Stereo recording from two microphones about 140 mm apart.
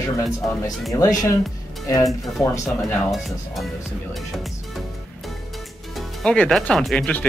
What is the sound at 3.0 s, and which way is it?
Speech, centre (ahead or behind).